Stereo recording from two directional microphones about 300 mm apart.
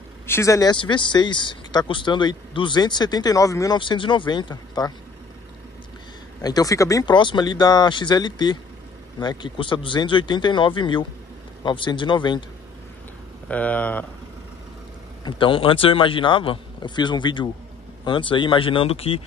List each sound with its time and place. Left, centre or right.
0.3 s speech: centre
6.4 s speech: centre
13.5 s speech: centre
15.2 s speech: centre